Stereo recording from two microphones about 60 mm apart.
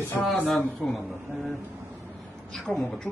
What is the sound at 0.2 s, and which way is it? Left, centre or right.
Speech, left.